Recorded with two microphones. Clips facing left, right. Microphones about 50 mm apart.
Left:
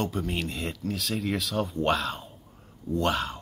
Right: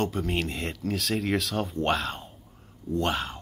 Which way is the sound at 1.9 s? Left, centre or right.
Right.